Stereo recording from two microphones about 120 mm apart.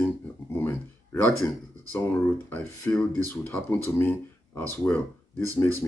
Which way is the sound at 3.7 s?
15° left (ahead or behind).